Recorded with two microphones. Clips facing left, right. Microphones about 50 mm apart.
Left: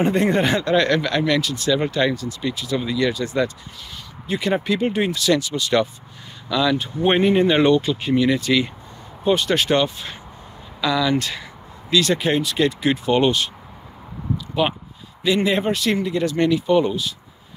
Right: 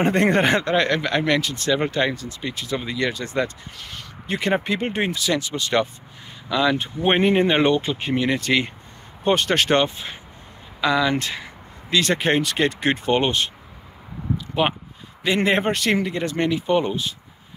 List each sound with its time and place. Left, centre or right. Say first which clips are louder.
0.0 s speech: even; right
0.7 s speech: left 2 dB; right
5.1 s speech: left 4 dB; right
8.4 s speech: left 2 dB; right
9.8 s speech: even; right
10.8 s speech: even; right
16.1 s speech: left 4 dB; right